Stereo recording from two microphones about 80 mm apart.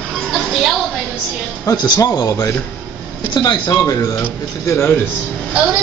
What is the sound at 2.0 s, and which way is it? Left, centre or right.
Speech, left.